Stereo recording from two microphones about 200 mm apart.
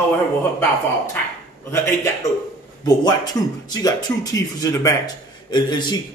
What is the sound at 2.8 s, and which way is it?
A man's voice, 20° left (ahead or behind).